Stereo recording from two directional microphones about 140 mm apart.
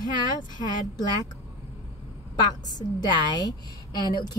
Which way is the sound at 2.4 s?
30° left (ahead or behind).